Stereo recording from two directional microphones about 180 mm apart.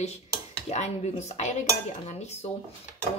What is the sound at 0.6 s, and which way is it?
A woman's voice, 40° left (ahead or behind).